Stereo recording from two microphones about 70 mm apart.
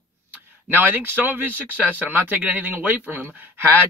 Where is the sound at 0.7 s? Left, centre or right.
Right.